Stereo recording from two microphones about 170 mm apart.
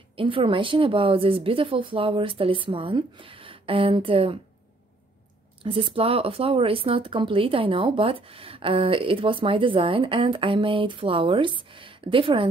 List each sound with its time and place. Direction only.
0.2 s speech: 30° right (ahead or behind)
5.6 s speech: 30° right (ahead or behind)